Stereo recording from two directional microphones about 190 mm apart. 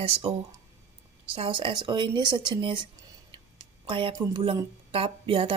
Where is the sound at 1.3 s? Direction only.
30° right (ahead or behind).